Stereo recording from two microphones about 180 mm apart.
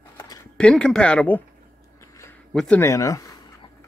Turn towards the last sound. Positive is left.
turn(degrees=20)  # may be behind; listen again after turning